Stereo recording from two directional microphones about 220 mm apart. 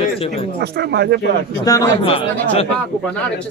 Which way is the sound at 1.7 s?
20° left (ahead or behind).